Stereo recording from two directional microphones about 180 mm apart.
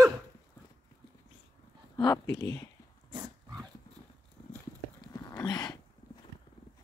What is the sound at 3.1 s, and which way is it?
Dog, 25° right (ahead or behind).